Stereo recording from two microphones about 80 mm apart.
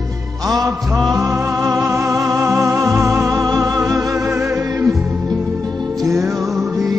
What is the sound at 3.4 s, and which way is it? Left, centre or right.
Music, right.